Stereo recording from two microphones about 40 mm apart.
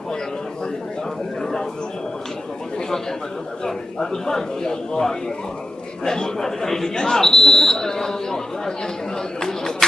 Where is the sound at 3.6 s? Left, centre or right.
Centre.